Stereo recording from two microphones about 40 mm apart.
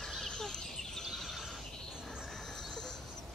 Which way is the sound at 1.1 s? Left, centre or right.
Centre.